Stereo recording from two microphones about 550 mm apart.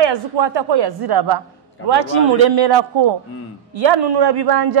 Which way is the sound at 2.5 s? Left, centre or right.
Right.